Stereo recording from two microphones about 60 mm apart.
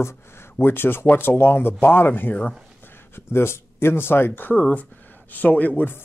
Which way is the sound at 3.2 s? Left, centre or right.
Left.